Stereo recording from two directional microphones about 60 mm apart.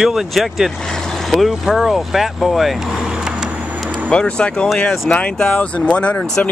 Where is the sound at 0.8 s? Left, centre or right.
Centre.